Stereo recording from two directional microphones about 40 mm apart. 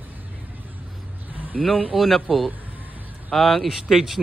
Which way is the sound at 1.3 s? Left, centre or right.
Right.